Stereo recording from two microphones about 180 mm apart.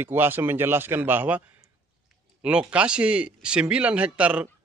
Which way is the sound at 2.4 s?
5° right (ahead or behind).